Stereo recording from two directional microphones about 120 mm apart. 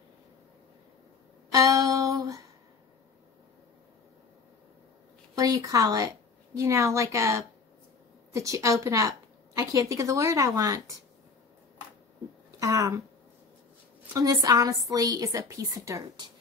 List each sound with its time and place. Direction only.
1.5 s a sound: 30° right (ahead or behind)
5.4 s a woman's voice: 30° right (ahead or behind)
12.4 s speech: 25° right (ahead or behind)
14.1 s a woman's voice: 30° right (ahead or behind)